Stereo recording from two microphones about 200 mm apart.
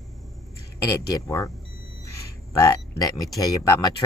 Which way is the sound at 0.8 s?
15° left (ahead or behind).